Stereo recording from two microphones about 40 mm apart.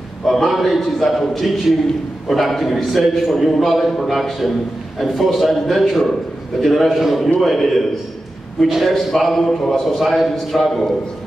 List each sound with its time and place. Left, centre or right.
0.3 s a man's voice: centre